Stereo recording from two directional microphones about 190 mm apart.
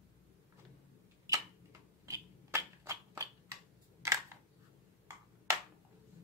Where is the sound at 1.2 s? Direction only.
15° right (ahead or behind).